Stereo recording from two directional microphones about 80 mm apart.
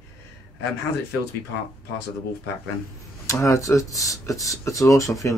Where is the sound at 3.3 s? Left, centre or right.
Left.